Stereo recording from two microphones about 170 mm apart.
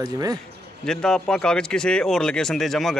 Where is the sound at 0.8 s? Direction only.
5° left (ahead or behind).